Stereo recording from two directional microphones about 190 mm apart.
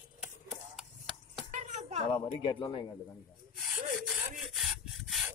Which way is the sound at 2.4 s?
25° left (ahead or behind).